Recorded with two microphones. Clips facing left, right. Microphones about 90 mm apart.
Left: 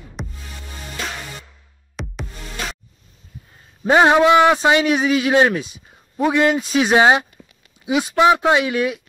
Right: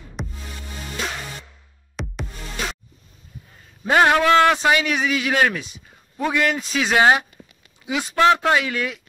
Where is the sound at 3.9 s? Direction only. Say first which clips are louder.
Left 3 dB; 20° left (ahead or behind).